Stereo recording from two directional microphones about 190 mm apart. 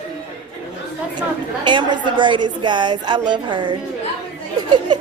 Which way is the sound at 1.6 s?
25° right (ahead or behind).